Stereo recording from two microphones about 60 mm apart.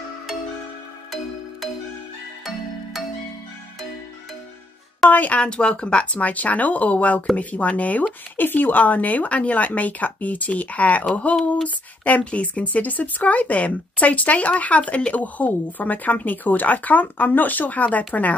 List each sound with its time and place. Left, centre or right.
2.4 s music: centre
5.1 s speech: left
5.4 s speech: centre